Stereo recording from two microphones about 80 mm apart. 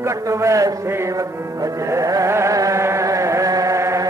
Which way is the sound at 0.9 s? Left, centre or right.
Right.